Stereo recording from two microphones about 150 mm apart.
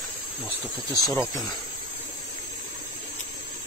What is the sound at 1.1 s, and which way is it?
Speech, centre (ahead or behind).